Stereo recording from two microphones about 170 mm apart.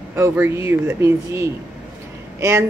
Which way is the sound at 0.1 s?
15° right (ahead or behind).